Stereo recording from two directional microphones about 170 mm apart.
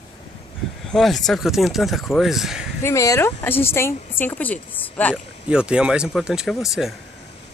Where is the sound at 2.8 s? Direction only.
20° left (ahead or behind).